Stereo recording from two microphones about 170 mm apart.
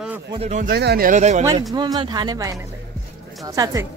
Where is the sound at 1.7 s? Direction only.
25° right (ahead or behind).